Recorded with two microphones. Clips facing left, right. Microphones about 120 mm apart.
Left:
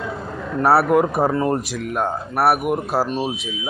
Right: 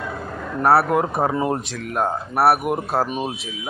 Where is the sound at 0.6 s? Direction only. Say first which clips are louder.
Left 2 dB; 5° left (ahead or behind).